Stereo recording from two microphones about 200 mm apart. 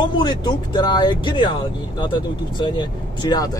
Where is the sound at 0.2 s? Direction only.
20° left (ahead or behind).